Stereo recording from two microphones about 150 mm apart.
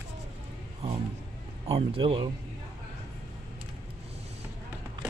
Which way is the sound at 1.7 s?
40° right (ahead or behind).